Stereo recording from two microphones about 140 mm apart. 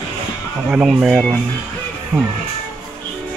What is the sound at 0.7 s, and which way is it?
Speech, 5° right (ahead or behind).